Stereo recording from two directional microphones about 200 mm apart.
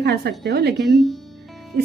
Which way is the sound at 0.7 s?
Centre (ahead or behind).